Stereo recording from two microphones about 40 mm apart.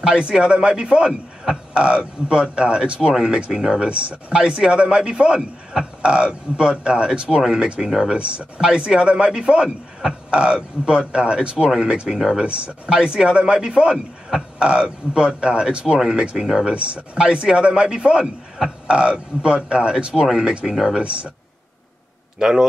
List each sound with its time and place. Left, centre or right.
0.3 s a man's voice: centre
3.9 s speech: right
4.3 s a man's voice: right
7.8 s a man's voice: centre
16.6 s a man's voice: right; by 18.7 s centre
18.9 s a man's voice: right
20.2 s speech: centre
21.0 s a man's voice: right
22.4 s speech: centre